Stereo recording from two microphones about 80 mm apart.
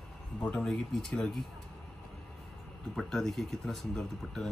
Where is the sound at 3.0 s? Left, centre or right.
Centre.